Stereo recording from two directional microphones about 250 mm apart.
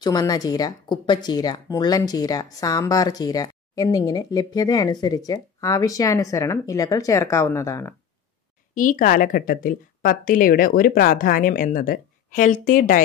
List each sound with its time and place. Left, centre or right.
0.0 s speech: centre
8.7 s a woman's voice: left